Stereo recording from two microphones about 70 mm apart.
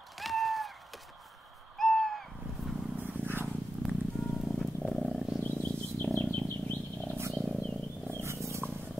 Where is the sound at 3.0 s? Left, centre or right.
Right.